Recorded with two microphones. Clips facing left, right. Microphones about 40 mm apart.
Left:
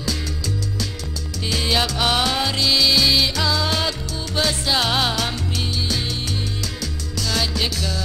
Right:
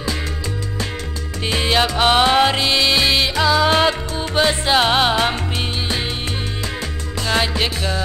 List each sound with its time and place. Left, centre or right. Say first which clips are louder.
1.4 s music: right 4 dB; right
7.2 s music: right 4 dB; right